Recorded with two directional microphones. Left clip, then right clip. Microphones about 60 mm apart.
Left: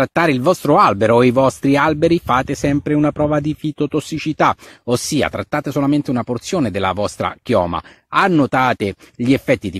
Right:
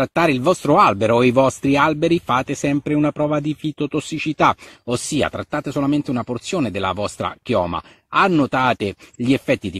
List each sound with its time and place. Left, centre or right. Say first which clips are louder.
0.0 s speech: left 2 dB; left
4.8 s speech: left 3 dB; left
7.6 s speech: left 3 dB; left